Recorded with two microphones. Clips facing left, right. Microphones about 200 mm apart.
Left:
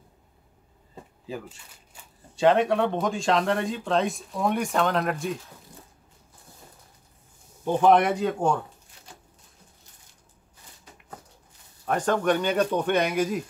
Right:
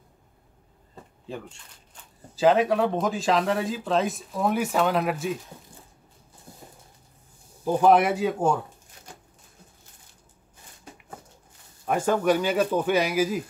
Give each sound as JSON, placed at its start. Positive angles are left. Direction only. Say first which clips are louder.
{"t": 0.9, "sound": "speech", "louder": "left 1 dB", "side_deg": 5}
{"t": 5.7, "sound": "a sound", "louder": "left 2 dB", "side_deg": -30}
{"t": 7.6, "sound": "speech", "louder": "even", "side_deg": -5}
{"t": 11.8, "sound": "speech", "louder": "right 1 dB", "side_deg": -10}